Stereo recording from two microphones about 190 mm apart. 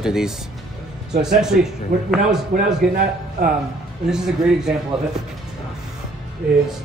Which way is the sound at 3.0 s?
45° right (ahead or behind).